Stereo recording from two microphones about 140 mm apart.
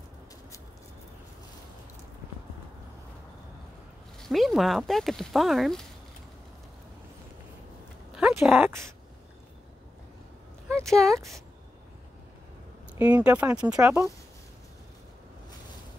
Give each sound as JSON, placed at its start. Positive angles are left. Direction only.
{"t": 4.2, "sound": "speech", "side_deg": 0}
{"t": 8.1, "sound": "a sound", "side_deg": -5}
{"t": 8.5, "sound": "speech", "side_deg": -15}
{"t": 10.8, "sound": "speech", "side_deg": 5}
{"t": 13.0, "sound": "speech", "side_deg": -10}